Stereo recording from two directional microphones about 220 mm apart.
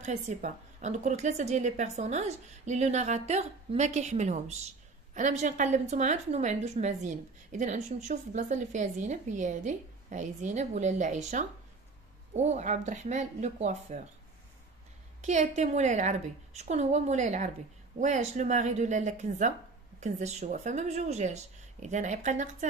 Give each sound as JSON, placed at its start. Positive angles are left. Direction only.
{"t": 0.0, "sound": "a woman's voice", "side_deg": -35}
{"t": 15.2, "sound": "a woman's voice", "side_deg": -30}